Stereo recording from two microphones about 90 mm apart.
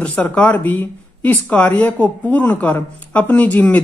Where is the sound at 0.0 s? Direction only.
15° left (ahead or behind).